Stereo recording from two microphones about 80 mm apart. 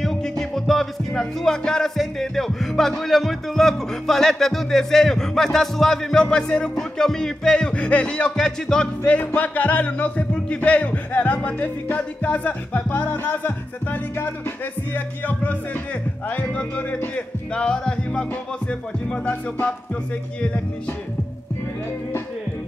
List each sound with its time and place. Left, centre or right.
0.0 s music: centre
6.2 s speech: centre
8.4 s music: centre
10.3 s speech: centre
11.1 s music: centre
15.0 s speech: centre